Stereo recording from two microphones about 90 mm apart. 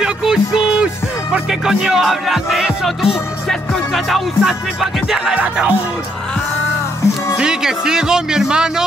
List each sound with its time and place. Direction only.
0.0 s music: 10° right (ahead or behind)
5.1 s music: 10° right (ahead or behind)
7.3 s speech: 10° right (ahead or behind)